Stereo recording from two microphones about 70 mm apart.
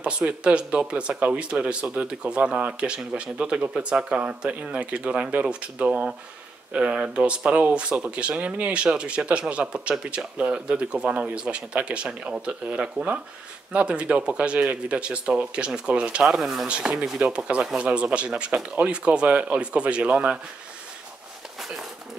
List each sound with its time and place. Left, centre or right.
0.0 s speech: centre